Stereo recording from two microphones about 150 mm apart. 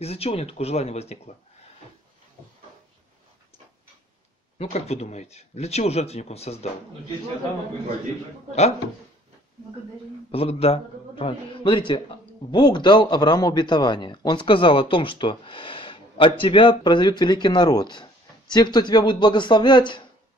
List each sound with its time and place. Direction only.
0.0 s a man's voice: 40° left (ahead or behind)
4.6 s a man's voice: 45° left (ahead or behind)
10.3 s speech: 40° left (ahead or behind)